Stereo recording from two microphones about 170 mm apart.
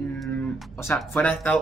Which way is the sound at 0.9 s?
Centre (ahead or behind).